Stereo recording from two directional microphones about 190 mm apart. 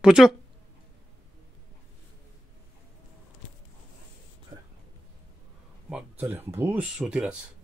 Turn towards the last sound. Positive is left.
turn(degrees=-5)  # may be behind; listen again after turning